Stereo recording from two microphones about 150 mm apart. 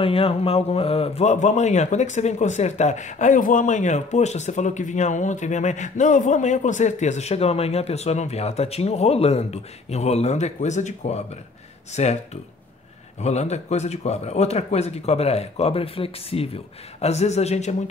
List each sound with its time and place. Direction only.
0.0 s speech: 40° left (ahead or behind)
13.2 s speech: 50° left (ahead or behind)